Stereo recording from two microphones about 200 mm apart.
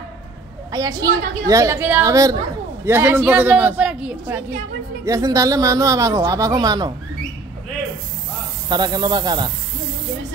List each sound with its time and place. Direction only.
0.7 s a woman's voice: 20° right (ahead or behind)
5.0 s speech: 15° right (ahead or behind)
8.6 s speech: 20° right (ahead or behind)